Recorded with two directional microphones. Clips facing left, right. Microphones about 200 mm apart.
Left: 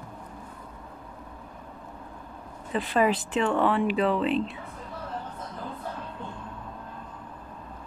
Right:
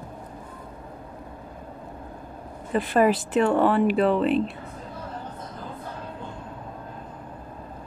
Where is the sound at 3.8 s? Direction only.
Centre (ahead or behind).